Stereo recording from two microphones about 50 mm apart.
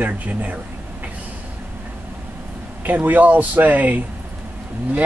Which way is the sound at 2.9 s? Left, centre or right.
Right.